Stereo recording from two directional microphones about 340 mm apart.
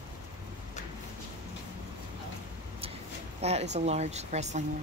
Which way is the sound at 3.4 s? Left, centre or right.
Centre.